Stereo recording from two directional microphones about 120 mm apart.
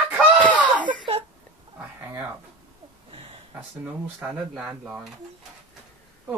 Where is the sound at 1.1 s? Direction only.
50° right (ahead or behind).